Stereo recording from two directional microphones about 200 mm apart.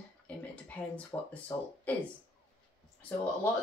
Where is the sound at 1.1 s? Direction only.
20° left (ahead or behind).